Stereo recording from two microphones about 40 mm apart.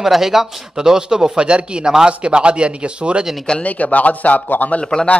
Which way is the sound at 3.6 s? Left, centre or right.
Left.